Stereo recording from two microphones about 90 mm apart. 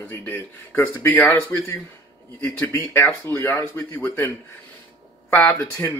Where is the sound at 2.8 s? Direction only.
20° left (ahead or behind).